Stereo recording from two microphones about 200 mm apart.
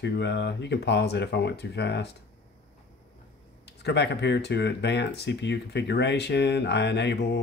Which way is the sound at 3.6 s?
55° left (ahead or behind).